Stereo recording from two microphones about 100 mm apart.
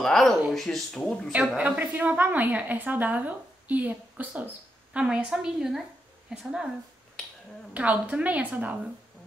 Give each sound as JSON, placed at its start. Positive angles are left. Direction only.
{"t": 0.0, "sound": "speech", "side_deg": 5}
{"t": 1.6, "sound": "a woman's voice", "side_deg": -15}
{"t": 7.7, "sound": "a woman's voice", "side_deg": -15}